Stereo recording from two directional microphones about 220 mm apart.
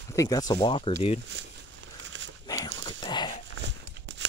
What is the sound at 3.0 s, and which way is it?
Dog, 20° left (ahead or behind).